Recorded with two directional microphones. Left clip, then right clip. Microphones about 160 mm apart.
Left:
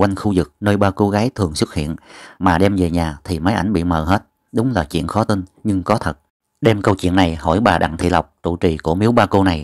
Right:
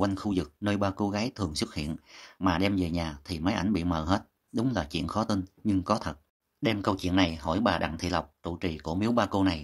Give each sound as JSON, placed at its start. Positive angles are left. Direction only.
{"t": 0.0, "sound": "speech", "side_deg": 40}